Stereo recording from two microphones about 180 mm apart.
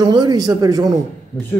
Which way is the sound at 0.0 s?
25° right (ahead or behind).